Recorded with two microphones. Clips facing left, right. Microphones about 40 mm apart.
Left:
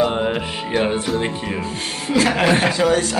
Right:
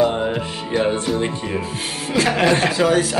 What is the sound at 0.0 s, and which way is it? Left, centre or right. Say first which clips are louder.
Music: even; left.